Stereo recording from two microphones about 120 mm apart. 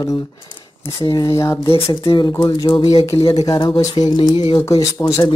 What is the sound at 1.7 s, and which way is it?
Speech, 50° left (ahead or behind).